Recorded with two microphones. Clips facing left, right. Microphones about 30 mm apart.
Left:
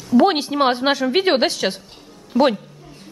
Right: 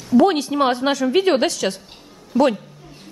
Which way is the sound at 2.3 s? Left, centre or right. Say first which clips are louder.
Even; centre.